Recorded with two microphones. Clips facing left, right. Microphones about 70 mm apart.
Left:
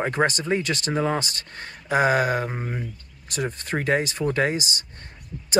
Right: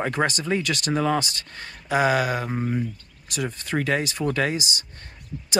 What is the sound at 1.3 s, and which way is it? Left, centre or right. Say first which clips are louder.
Speech: even; left.